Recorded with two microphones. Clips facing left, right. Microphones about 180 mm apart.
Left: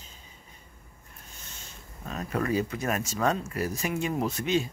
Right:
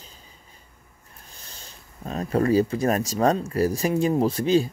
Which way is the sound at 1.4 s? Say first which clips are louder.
Right 1 dB; 35° right (ahead or behind).